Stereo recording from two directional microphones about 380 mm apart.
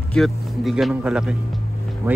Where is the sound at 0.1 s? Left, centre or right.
Centre.